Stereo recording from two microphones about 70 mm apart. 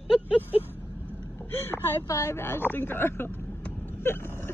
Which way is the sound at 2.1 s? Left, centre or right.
Left.